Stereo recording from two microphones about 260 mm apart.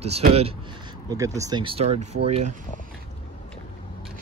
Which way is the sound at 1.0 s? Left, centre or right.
Centre.